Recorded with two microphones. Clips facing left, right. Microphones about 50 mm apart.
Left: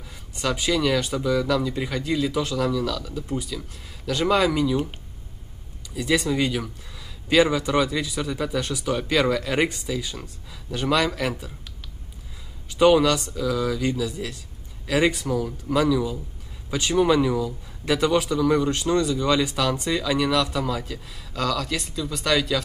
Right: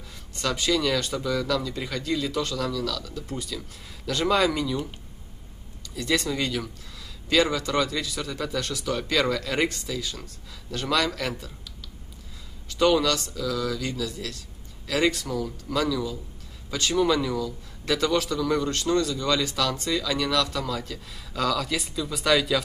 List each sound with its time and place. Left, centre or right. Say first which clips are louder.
0.4 s a man's voice: left 2 dB; centre
5.9 s a man's voice: left 4 dB; centre
12.6 s a man's voice: left 4 dB; centre